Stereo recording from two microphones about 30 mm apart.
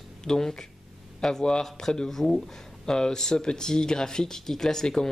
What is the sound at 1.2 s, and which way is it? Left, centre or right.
Mantra, centre.